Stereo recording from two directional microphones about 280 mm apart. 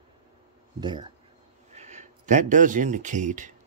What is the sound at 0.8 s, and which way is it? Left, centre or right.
Speech, centre.